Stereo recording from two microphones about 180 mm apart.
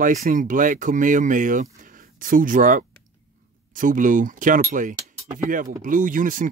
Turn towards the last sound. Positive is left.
turn(degrees=-50)  # may be behind; listen again after turning